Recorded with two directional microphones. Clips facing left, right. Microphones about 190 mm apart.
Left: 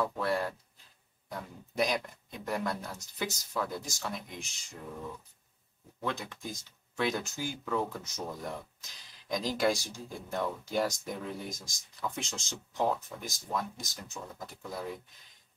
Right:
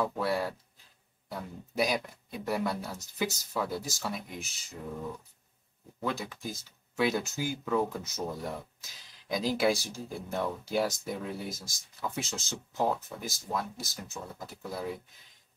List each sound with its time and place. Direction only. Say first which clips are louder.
0.0 s speech: right 1 dB; 10° right (ahead or behind)
6.0 s speech: right 2 dB; 5° right (ahead or behind)
13.7 s speech: right 2 dB; 15° left (ahead or behind)
14.4 s speech: right 2 dB; 10° right (ahead or behind)